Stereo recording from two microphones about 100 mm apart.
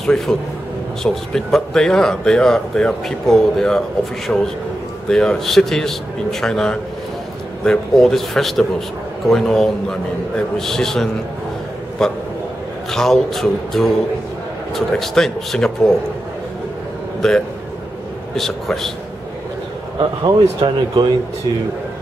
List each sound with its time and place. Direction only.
0.0 s speech: 5° left (ahead or behind)
12.9 s speech: 5° left (ahead or behind)
17.2 s speech: 5° left (ahead or behind)
20.0 s speech: 50° right (ahead or behind)